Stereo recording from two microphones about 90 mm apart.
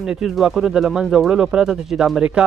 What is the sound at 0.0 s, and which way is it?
Speech, 5° right (ahead or behind).